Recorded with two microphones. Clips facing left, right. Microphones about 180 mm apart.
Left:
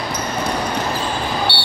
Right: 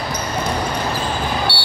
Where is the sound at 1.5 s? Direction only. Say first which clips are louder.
Left 1 dB; 25° left (ahead or behind).